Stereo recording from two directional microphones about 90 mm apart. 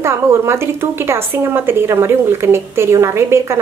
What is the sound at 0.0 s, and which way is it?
A woman's voice, 30° right (ahead or behind).